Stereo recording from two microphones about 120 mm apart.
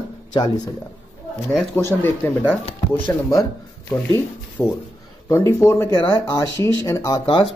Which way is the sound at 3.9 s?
20° left (ahead or behind).